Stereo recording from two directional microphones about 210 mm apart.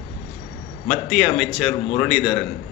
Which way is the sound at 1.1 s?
Centre (ahead or behind).